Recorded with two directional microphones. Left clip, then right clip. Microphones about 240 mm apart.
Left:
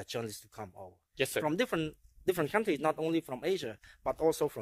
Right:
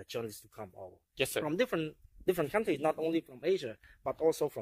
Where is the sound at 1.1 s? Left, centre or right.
Centre.